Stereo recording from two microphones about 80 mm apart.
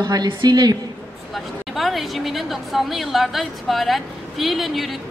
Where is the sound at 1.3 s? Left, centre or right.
Centre.